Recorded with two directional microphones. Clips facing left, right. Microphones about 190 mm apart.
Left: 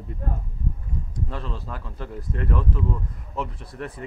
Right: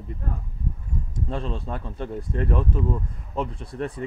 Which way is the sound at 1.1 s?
25° right (ahead or behind).